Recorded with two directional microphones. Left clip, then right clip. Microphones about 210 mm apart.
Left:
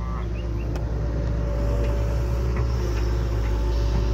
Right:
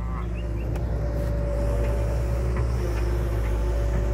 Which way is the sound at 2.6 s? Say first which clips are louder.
Left 1 dB; 70° left (ahead or behind).